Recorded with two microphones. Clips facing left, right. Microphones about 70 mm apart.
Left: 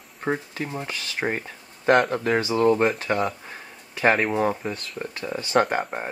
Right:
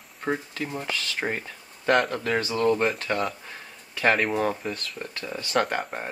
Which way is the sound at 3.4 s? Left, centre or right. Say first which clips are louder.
Left 2 dB; left.